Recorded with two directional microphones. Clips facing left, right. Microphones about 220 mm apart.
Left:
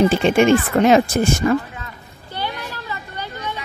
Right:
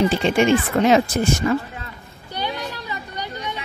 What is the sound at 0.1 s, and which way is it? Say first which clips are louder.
Speech: left 3 dB; 55° left (ahead or behind).